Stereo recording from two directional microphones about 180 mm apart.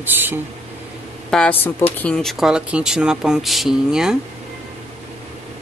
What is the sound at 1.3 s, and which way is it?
Speech, 5° left (ahead or behind).